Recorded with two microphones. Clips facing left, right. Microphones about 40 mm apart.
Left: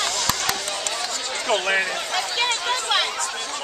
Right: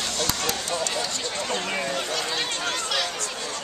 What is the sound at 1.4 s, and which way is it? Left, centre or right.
Speech, left.